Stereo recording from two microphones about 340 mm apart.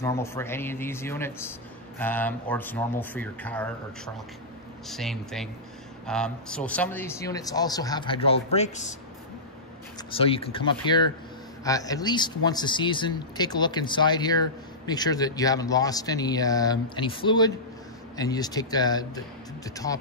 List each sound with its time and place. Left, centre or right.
0.0 s speech: centre
10.1 s speech: centre